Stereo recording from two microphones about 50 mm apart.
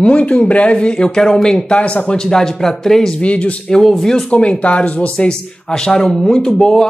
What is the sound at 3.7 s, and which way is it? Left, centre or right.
Speech, centre.